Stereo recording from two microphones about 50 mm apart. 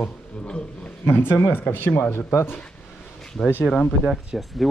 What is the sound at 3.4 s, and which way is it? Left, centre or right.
Speech, left.